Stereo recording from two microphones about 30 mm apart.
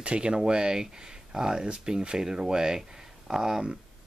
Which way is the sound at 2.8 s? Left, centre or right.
Centre.